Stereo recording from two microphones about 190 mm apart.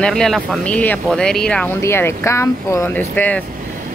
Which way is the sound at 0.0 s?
Centre (ahead or behind).